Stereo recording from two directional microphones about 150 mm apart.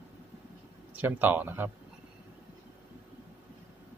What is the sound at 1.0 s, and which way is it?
Speech, 10° right (ahead or behind).